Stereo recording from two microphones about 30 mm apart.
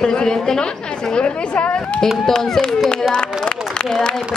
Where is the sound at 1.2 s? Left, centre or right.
Left.